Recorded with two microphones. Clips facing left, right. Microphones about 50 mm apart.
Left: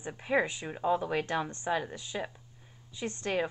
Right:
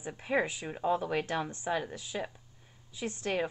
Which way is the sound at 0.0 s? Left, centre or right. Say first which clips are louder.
Left 2 dB; centre.